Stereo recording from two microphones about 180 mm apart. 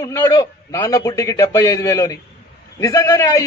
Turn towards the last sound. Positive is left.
turn(degrees=15)  # may be behind; listen again after turning